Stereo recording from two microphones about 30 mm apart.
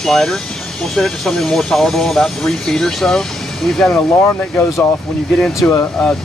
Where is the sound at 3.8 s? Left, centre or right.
Left.